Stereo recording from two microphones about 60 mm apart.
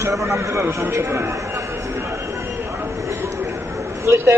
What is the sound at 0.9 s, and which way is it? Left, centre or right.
Speech, right.